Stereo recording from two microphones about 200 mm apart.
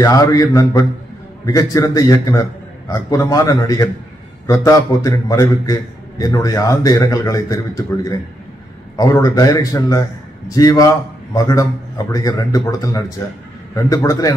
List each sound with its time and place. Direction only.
0.0 s a man's voice: 15° left (ahead or behind)